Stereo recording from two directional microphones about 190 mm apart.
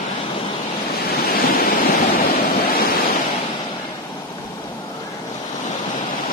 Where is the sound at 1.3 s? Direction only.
50° left (ahead or behind).